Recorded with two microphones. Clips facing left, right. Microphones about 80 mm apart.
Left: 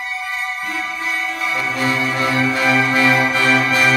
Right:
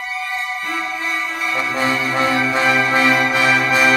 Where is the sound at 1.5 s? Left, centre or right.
Right.